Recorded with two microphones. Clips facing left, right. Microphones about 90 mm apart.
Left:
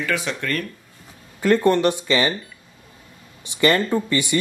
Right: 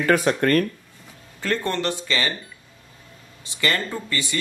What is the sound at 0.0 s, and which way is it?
Speech, 45° right (ahead or behind).